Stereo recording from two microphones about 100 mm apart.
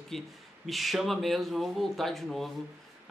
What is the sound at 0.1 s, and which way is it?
A man's voice, 5° left (ahead or behind).